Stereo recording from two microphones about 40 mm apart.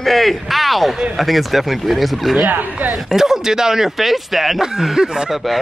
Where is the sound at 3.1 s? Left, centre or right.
Centre.